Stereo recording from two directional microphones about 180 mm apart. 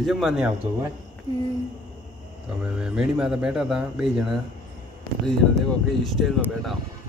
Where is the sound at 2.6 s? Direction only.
5° right (ahead or behind).